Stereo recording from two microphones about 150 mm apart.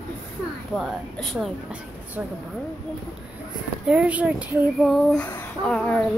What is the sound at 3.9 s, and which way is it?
Speech, 10° right (ahead or behind).